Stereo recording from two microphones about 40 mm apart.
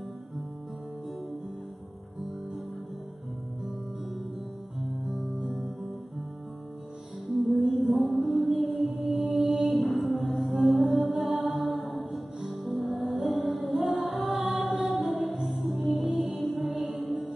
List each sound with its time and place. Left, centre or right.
5.4 s music: centre
7.4 s music: centre
9.2 s mantra: centre
9.9 s music: centre
16.1 s music: centre